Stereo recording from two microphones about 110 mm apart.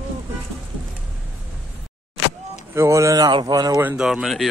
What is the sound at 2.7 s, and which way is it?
Speech, 25° right (ahead or behind).